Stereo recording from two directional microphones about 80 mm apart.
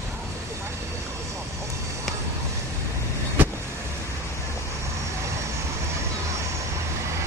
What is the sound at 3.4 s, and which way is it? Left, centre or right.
Vehicle, right.